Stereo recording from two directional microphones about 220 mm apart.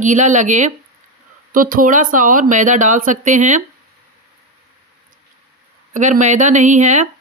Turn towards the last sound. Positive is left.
turn(degrees=-35)  # may be behind; listen again after turning